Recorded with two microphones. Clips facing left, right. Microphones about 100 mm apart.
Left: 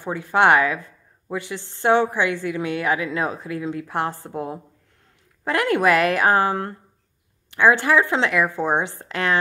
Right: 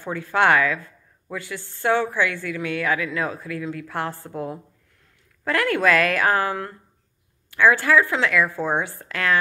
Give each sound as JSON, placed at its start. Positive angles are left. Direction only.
{"t": 0.0, "sound": "speech", "side_deg": 20}